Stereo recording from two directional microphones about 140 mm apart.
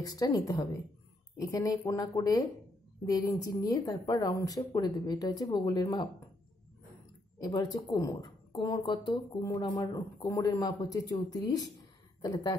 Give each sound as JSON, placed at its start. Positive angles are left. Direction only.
{"t": 0.0, "sound": "speech", "side_deg": 25}
{"t": 7.3, "sound": "speech", "side_deg": 30}